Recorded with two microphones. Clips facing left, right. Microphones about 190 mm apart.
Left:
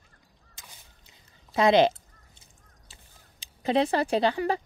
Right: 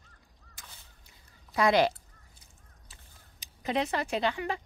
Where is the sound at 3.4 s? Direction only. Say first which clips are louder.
Left 6 dB; 30° left (ahead or behind).